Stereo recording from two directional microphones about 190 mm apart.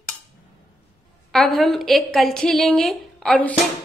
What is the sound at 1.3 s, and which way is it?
A woman's voice, centre (ahead or behind).